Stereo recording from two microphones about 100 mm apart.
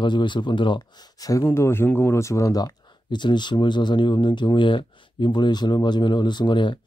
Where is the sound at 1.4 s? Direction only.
25° left (ahead or behind).